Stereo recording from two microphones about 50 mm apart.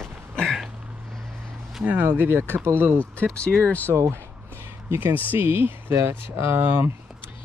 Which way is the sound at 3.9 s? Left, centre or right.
Right.